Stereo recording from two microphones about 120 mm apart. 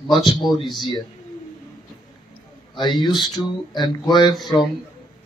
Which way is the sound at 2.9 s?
35° left (ahead or behind).